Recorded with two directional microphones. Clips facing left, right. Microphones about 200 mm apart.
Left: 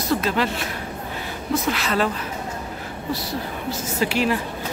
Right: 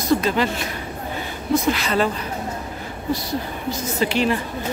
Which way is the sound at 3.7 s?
5° left (ahead or behind).